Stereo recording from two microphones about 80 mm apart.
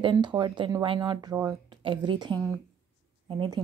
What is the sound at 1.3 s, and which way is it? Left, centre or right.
Speech, right.